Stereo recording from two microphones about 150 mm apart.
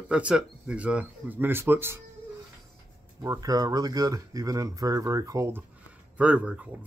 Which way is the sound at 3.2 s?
20° right (ahead or behind).